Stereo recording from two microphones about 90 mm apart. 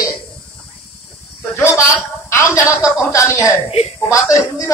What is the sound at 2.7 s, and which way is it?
Speech, 5° right (ahead or behind).